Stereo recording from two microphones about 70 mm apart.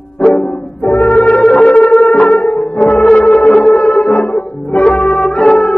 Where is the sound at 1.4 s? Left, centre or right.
Centre.